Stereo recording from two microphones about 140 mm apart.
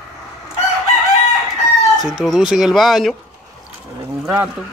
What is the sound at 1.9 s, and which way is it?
Speech, centre (ahead or behind).